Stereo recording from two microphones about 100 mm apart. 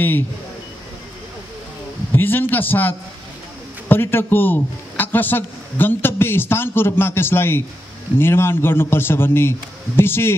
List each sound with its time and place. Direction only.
2.1 s a man's voice: 20° left (ahead or behind)